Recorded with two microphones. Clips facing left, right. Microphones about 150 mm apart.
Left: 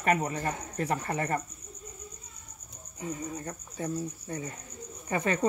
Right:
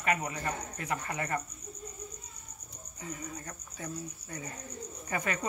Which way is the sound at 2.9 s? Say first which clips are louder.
Left 6 dB; 25° left (ahead or behind).